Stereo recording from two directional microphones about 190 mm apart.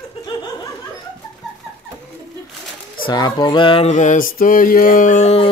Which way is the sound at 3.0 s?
20° left (ahead or behind).